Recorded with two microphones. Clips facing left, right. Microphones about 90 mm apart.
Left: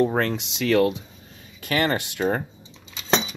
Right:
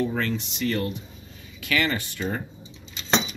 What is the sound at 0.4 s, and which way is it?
Speech, 90° left.